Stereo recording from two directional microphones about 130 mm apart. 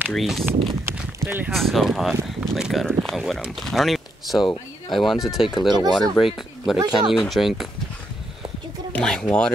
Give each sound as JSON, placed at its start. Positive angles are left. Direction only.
{"t": 0.1, "sound": "speech", "side_deg": 0}
{"t": 0.9, "sound": "speech", "side_deg": -20}
{"t": 1.5, "sound": "speech", "side_deg": 0}
{"t": 8.9, "sound": "speech", "side_deg": 5}